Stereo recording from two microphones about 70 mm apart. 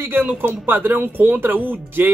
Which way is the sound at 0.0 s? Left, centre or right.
Right.